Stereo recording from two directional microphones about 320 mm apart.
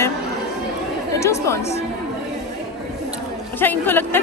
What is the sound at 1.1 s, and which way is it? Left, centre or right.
Speech, centre.